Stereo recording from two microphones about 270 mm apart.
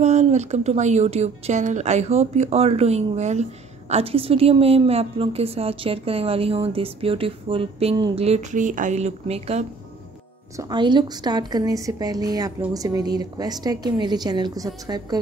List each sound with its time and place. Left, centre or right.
0.0 s a woman's voice: right